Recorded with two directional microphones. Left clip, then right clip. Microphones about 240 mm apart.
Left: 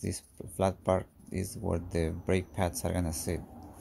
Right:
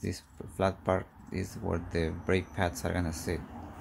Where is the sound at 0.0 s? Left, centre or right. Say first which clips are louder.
Even; left.